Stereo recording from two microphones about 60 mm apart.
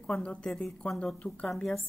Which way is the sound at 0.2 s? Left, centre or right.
Centre.